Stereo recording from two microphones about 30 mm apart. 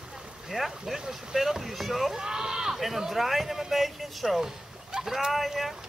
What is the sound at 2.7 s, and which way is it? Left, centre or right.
Speech, centre.